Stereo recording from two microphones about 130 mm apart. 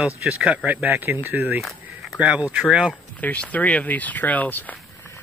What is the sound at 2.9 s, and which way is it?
Speech, 10° left (ahead or behind).